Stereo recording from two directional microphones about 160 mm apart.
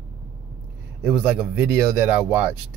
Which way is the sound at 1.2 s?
5° right (ahead or behind).